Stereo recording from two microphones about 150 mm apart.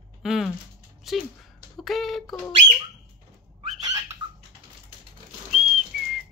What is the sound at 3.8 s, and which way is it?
Bird, 20° right (ahead or behind).